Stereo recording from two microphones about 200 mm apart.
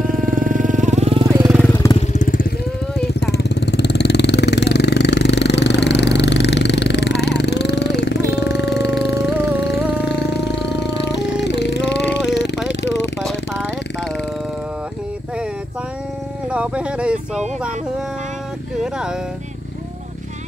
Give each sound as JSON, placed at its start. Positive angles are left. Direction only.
{"t": 0.0, "sound": "vehicle", "side_deg": -45}
{"t": 1.5, "sound": "vehicle", "side_deg": 5}
{"t": 2.0, "sound": "vehicle", "side_deg": 40}
{"t": 3.1, "sound": "vehicle", "side_deg": 55}
{"t": 10.0, "sound": "music", "side_deg": 60}
{"t": 11.4, "sound": "a sound", "side_deg": 60}
{"t": 13.2, "sound": "a sound", "side_deg": 0}
{"t": 16.4, "sound": "wild animals", "side_deg": -5}
{"t": 18.8, "sound": "a sound", "side_deg": -5}